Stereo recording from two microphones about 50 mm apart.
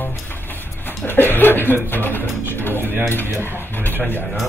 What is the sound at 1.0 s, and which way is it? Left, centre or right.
Speech, left.